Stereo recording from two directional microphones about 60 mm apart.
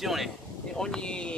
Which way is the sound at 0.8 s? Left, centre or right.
Centre.